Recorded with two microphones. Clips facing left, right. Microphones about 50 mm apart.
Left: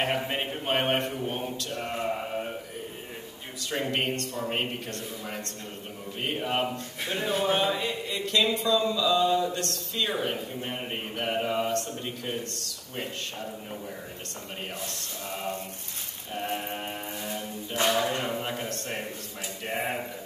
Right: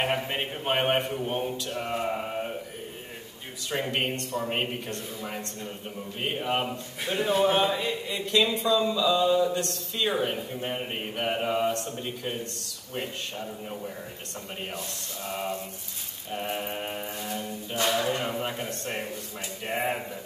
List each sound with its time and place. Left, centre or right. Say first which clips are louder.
0.0 s a man's voice: even; centre
3.7 s speech: even; centre
4.1 s a man's voice: even; centre
4.4 s a man's voice: right 1 dB; centre
8.6 s a man's voice: right 1 dB; centre
9.5 s a man's voice: right 2 dB; centre
16.5 s speech: right 1 dB; centre
19.7 s a man's voice: right 2 dB; centre